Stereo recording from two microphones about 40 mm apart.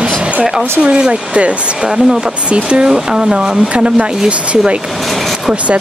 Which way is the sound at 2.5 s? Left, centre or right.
Right.